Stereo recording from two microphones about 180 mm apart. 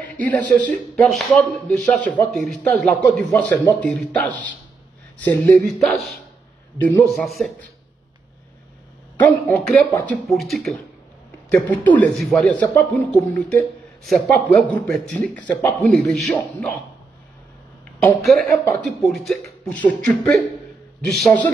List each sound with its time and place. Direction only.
0.0 s a sound: 10° left (ahead or behind)
0.6 s a man's voice: 5° left (ahead or behind)
9.1 s a man's voice: 10° left (ahead or behind)
17.9 s speech: 5° left (ahead or behind)